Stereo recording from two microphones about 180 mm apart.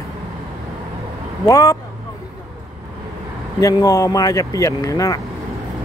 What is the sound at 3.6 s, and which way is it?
Speech, 20° left (ahead or behind).